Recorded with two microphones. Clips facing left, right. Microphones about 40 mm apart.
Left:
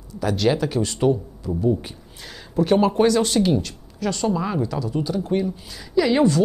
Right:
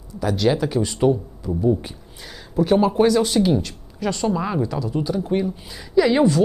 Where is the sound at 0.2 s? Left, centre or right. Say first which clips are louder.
Right 1 dB; centre.